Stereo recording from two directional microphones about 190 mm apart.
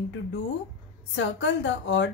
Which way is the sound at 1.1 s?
75° left (ahead or behind).